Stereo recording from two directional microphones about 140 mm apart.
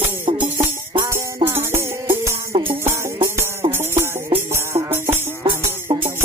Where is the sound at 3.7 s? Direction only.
20° right (ahead or behind).